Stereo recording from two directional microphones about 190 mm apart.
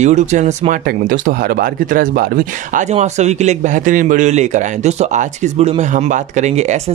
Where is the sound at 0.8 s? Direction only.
50° right (ahead or behind).